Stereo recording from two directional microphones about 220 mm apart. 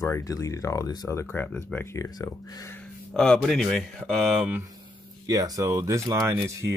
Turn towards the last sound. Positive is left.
turn(degrees=-10)  # may be behind; listen again after turning